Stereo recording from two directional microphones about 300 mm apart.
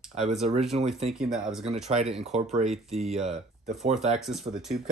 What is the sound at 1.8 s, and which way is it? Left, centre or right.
Speech, right.